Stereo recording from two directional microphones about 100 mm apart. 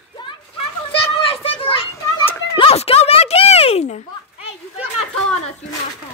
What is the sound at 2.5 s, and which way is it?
Music, 75° left (ahead or behind).